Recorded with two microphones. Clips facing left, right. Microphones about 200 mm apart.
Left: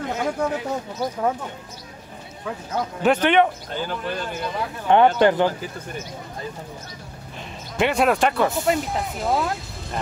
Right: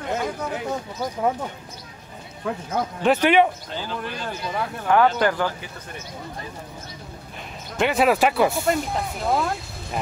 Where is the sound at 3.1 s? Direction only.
10° right (ahead or behind).